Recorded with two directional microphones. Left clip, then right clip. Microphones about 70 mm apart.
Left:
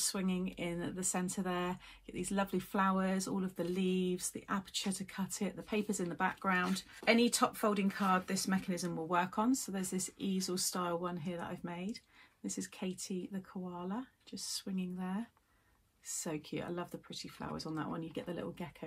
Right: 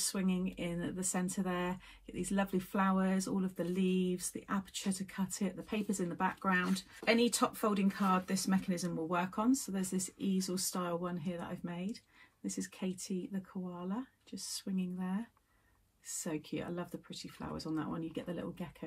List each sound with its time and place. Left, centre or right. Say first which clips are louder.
0.1 s speech: right 1 dB; left
11.0 s speech: even; left
16.1 s speech: right 1 dB; left